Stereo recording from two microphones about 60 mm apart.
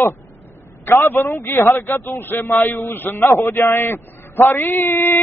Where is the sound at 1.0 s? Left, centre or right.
Left.